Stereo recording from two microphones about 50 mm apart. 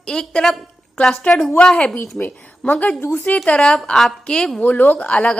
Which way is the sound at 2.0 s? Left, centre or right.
Left.